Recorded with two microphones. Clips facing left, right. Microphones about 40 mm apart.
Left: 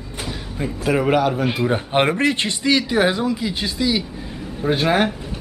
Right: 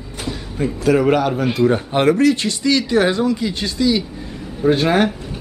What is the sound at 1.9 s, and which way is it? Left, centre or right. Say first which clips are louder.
Speech: right 1 dB; left.